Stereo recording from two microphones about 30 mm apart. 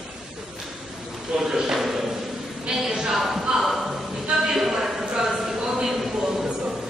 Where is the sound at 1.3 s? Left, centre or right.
Right.